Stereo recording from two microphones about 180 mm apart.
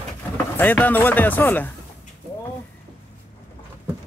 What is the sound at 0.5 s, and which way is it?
Speech, 10° left (ahead or behind).